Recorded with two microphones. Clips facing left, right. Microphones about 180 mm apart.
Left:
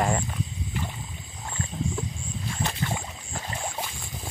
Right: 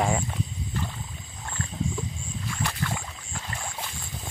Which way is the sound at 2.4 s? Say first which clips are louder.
Left 1 dB; 25° left (ahead or behind).